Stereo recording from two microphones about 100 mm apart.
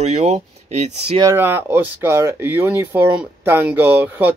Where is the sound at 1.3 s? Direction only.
20° right (ahead or behind).